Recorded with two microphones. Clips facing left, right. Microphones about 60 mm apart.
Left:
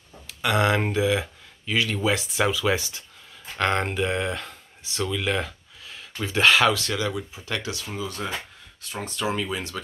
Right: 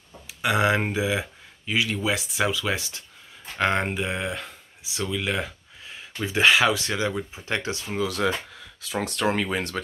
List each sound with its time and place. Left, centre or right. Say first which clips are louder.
0.3 s speech: even; centre
3.5 s speech: even; centre; by 8.0 s right
8.0 s speech: right 8 dB; right
9.0 s speech: right 2 dB; right